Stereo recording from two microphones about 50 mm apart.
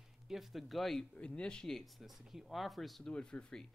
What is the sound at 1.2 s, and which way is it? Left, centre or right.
Speech, left.